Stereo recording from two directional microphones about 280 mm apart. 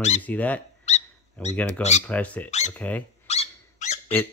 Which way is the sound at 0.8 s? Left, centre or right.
Left.